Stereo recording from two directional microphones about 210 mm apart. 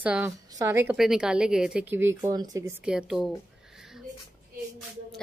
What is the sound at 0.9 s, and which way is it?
Speech, centre (ahead or behind).